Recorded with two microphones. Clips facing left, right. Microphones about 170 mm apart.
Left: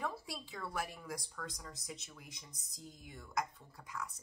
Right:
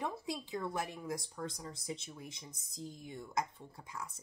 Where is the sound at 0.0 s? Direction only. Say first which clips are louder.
Right 3 dB; 20° right (ahead or behind).